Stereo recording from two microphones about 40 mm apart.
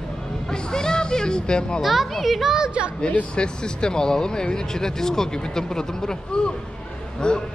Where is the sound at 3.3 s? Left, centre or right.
Left.